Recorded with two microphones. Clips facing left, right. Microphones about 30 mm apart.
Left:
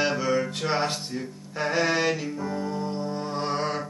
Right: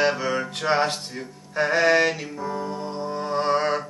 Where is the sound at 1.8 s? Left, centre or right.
Right.